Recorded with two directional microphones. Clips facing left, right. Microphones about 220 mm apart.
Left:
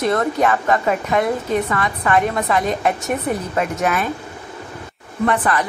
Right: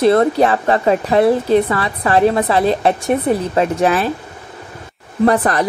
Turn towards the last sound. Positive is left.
turn(degrees=-40)  # may be behind; listen again after turning